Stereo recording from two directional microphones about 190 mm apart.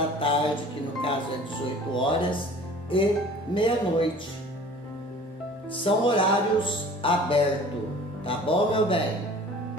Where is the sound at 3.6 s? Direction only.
25° left (ahead or behind).